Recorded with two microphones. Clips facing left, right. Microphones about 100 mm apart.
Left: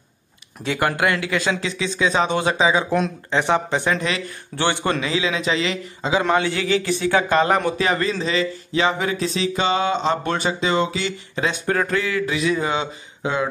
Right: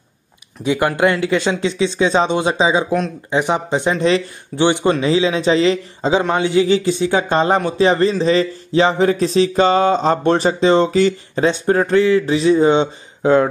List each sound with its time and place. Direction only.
0.7 s speech: 20° right (ahead or behind)
3.9 s a man's voice: 30° right (ahead or behind)
4.6 s speech: 15° right (ahead or behind)
5.0 s a man's voice: 35° right (ahead or behind)
6.3 s a man's voice: 20° right (ahead or behind); by 13.5 s 40° right (ahead or behind)